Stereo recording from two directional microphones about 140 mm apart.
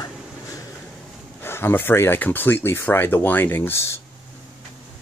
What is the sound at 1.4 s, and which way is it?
Speech, 15° left (ahead or behind).